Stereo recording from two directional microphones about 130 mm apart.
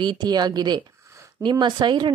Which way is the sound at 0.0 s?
35° right (ahead or behind).